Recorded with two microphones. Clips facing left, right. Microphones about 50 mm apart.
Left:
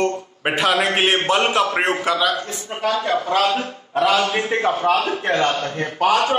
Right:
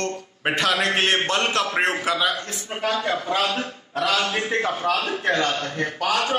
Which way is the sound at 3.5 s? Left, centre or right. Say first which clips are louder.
Left 5 dB; centre.